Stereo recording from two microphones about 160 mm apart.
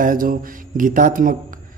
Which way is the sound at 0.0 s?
60° right (ahead or behind).